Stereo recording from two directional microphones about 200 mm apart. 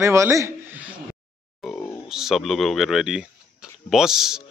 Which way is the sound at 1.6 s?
5° left (ahead or behind).